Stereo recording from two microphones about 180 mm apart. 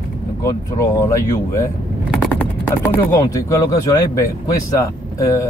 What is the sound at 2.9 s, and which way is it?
Speech, 15° left (ahead or behind).